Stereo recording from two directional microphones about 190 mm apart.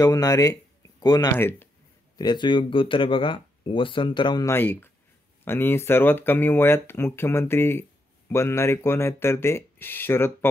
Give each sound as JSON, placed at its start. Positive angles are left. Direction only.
{"t": 0.0, "sound": "speech", "side_deg": 20}